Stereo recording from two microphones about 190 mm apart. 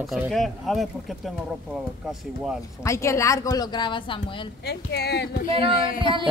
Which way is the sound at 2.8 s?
15° left (ahead or behind).